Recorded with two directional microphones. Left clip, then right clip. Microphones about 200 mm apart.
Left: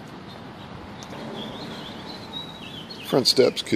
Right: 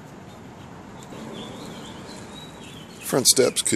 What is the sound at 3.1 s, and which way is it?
Speech, centre (ahead or behind).